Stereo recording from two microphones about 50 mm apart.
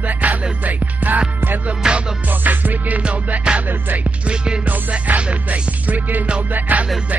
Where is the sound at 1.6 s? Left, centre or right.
Centre.